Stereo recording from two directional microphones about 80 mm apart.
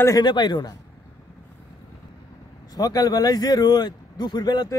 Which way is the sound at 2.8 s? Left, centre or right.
Left.